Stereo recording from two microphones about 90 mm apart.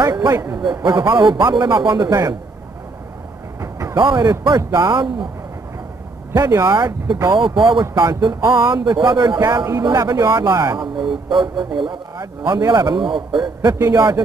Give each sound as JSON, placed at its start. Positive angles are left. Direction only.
{"t": 0.0, "sound": "speech", "side_deg": -50}
{"t": 0.3, "sound": "speech", "side_deg": -30}
{"t": 0.7, "sound": "a man's voice", "side_deg": -55}
{"t": 3.9, "sound": "speech", "side_deg": -55}
{"t": 4.7, "sound": "speech", "side_deg": -60}
{"t": 6.3, "sound": "speech", "side_deg": -40}
{"t": 6.7, "sound": "a man's voice", "side_deg": -55}
{"t": 8.1, "sound": "a man's voice", "side_deg": -50}
{"t": 12.5, "sound": "a man's voice", "side_deg": -45}